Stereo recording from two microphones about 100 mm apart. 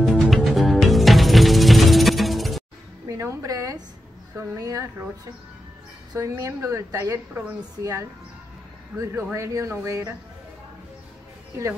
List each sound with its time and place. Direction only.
0.0 s music: centre (ahead or behind)
3.1 s a sound: 30° right (ahead or behind)
4.4 s speech: 35° right (ahead or behind)
6.1 s speech: 30° right (ahead or behind)